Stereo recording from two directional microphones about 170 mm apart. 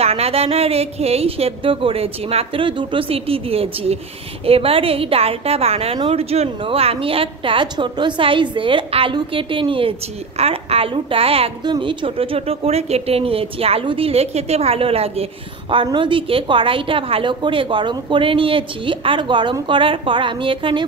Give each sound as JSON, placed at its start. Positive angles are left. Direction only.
{"t": 0.0, "sound": "a woman's voice", "side_deg": -35}